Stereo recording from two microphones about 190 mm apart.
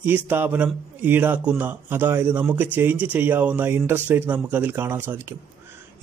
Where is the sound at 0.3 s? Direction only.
10° right (ahead or behind).